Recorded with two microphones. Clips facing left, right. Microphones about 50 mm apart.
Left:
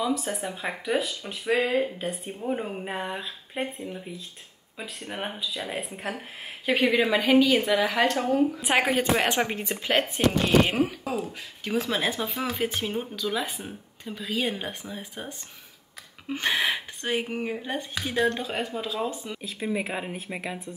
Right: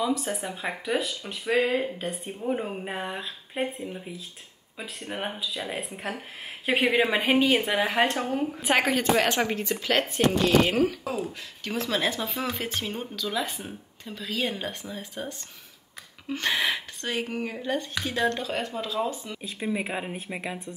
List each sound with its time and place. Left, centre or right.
0.0 s speech: centre
6.8 s a woman's voice: right
8.4 s speech: centre
9.6 s speech: left
19.4 s speech: centre